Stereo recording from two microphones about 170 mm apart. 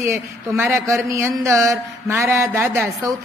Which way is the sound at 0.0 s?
15° right (ahead or behind).